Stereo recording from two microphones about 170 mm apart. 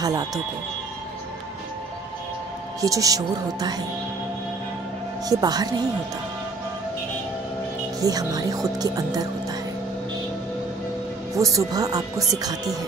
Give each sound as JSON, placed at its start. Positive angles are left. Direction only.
{"t": 0.0, "sound": "speech", "side_deg": -20}
{"t": 2.8, "sound": "speech", "side_deg": -20}
{"t": 5.3, "sound": "speech", "side_deg": -20}
{"t": 8.0, "sound": "speech", "side_deg": -20}
{"t": 11.3, "sound": "speech", "side_deg": -20}